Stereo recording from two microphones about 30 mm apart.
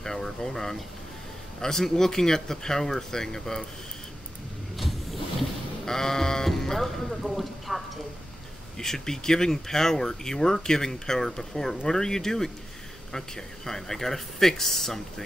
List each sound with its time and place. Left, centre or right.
0.0 s a sound: centre
1.6 s speech: centre
4.7 s vehicle: centre
5.9 s speech: centre
7.1 s speech: centre
8.7 s speech: centre
13.7 s speech: centre